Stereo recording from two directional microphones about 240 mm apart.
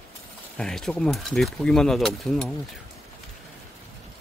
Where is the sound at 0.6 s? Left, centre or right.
Centre.